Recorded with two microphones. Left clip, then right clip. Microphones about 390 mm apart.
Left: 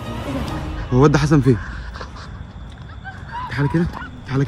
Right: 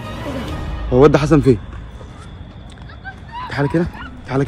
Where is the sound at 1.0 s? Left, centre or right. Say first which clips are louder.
Right 4 dB; centre.